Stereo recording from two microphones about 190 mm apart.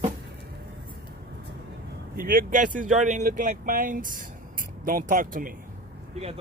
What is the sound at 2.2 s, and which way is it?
Speech, 45° right (ahead or behind).